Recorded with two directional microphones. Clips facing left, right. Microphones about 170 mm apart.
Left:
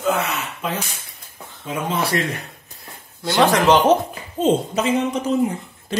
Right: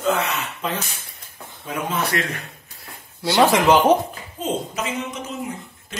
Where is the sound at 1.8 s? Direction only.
30° left (ahead or behind).